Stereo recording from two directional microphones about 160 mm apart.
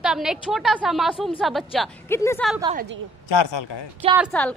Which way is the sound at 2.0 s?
15° left (ahead or behind).